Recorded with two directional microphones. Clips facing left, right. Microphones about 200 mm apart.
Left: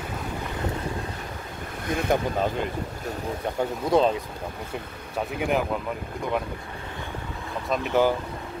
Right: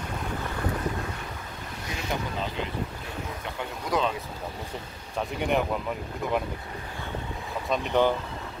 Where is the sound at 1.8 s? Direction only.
55° left (ahead or behind); by 4.2 s 35° left (ahead or behind).